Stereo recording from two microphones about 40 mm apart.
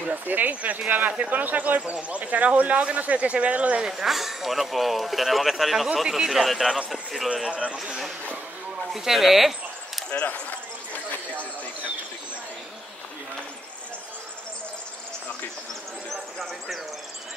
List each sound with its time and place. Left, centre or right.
0.0 s speech: right
1.8 s speech: right
3.9 s speech: centre
6.0 s speech: centre
7.5 s speech: right
8.9 s speech: centre
16.1 s a sound: centre